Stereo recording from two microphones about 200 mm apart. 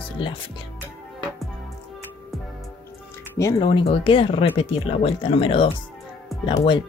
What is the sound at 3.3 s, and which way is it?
Speech, 20° left (ahead or behind).